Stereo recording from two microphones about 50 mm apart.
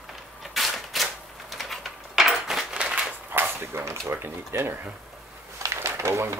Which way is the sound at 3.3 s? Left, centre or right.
Right.